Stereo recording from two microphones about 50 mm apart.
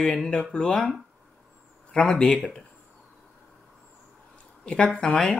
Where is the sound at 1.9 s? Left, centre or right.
Left.